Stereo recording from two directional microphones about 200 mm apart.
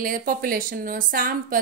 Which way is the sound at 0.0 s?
45° right (ahead or behind).